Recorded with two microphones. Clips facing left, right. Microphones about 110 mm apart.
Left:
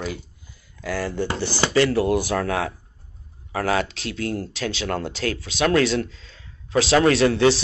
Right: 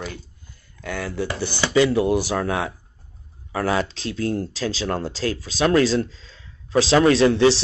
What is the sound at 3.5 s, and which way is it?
Speech, 35° right (ahead or behind).